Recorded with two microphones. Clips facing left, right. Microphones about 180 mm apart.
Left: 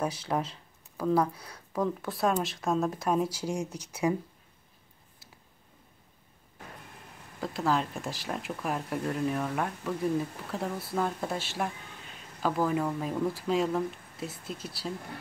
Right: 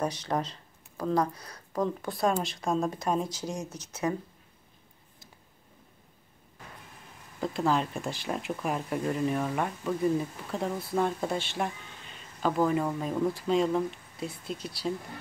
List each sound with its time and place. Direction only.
0.0 s speech: 5° left (ahead or behind)
7.3 s speech: centre (ahead or behind)